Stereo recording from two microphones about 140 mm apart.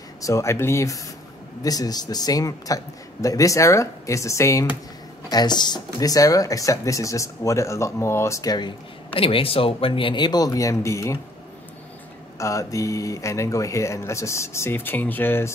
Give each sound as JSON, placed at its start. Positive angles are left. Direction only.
{"t": 0.2, "sound": "speech", "side_deg": 20}
{"t": 12.4, "sound": "speech", "side_deg": 20}